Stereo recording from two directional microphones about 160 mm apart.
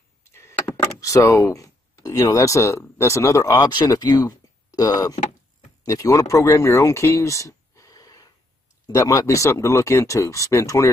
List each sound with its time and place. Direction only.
0.2 s speech: 15° left (ahead or behind)